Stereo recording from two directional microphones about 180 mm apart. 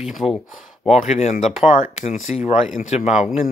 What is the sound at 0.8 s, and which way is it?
Speech, 40° left (ahead or behind).